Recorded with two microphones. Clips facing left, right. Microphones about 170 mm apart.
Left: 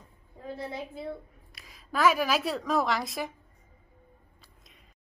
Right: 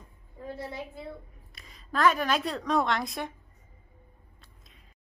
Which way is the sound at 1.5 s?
Centre (ahead or behind).